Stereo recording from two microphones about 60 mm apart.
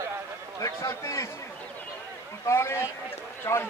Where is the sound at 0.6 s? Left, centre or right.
Left.